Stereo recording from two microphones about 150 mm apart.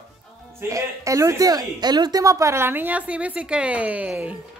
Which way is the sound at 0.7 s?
20° right (ahead or behind).